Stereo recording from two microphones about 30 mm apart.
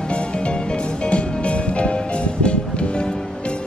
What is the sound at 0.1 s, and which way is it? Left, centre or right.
Music, left.